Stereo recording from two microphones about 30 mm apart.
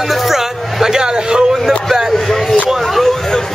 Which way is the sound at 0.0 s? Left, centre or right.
Centre.